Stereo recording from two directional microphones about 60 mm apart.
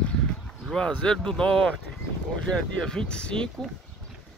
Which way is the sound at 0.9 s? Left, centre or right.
Centre.